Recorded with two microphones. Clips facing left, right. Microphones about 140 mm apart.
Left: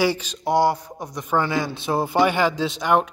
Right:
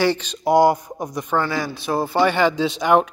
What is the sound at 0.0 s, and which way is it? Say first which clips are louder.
Speech: right 2 dB; 5° left (ahead or behind).